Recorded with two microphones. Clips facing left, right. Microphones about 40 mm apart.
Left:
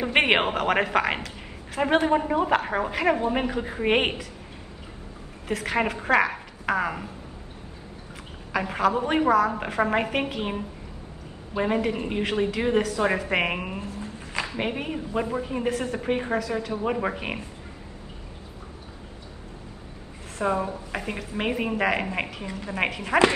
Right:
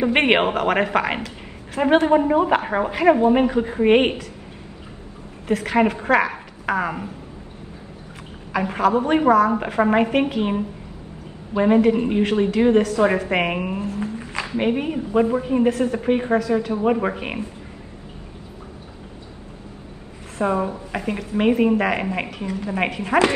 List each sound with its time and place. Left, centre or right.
0.0 s a woman's voice: centre
5.5 s a woman's voice: centre
8.5 s a woman's voice: centre
13.7 s a sound: right
14.6 s a woman's voice: centre
16.5 s a woman's voice: centre
20.4 s a woman's voice: centre